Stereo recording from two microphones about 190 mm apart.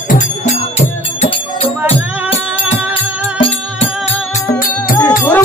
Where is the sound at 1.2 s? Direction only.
30° left (ahead or behind).